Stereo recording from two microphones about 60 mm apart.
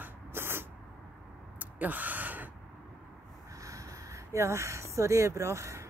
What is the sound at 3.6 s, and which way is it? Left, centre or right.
Speech, right.